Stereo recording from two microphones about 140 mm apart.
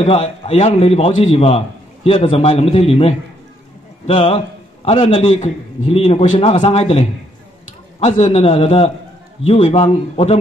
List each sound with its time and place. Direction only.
0.0 s a man's voice: 50° left (ahead or behind)
5.1 s a man's voice: 55° left (ahead or behind)